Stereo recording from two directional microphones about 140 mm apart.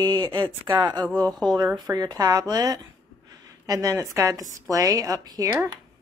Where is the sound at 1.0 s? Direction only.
10° left (ahead or behind).